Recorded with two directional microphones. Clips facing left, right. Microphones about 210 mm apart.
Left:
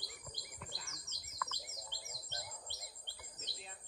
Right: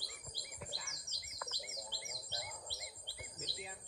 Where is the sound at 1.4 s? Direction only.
10° right (ahead or behind).